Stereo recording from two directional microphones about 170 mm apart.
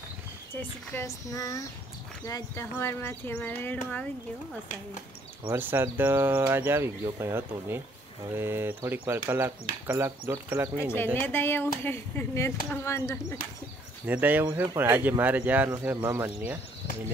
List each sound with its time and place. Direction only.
0.6 s speech: 15° left (ahead or behind)
5.5 s speech: 15° right (ahead or behind)
11.1 s speech: 10° left (ahead or behind)
14.0 s speech: 10° right (ahead or behind)